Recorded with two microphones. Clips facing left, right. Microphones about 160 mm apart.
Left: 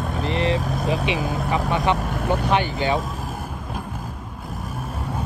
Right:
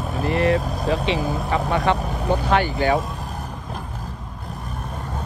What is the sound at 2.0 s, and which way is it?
Vehicle, 70° left (ahead or behind).